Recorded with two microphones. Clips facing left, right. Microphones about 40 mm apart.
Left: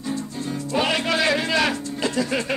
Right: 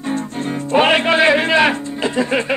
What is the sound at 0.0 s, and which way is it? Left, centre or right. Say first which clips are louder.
Music: right 6 dB; right.